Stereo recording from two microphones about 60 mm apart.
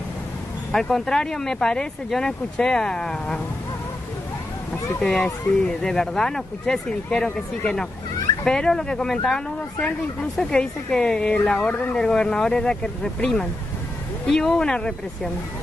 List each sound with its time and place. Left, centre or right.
0.7 s speech: centre
5.0 s speech: centre
10.5 s speech: centre
11.5 s speech: left
11.9 s speech: centre